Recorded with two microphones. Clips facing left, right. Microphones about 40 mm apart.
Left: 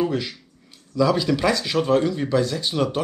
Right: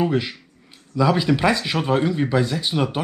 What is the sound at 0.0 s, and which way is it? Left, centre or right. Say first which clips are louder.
Speech: right 2 dB; right.